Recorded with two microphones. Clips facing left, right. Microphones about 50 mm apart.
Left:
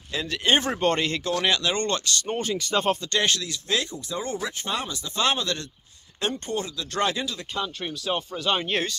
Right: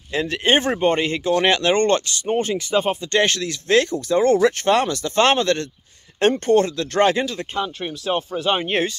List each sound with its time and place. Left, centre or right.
0.1 s speech: right
0.7 s speech: centre
1.4 s speech: right
2.7 s speech: centre
3.1 s speech: right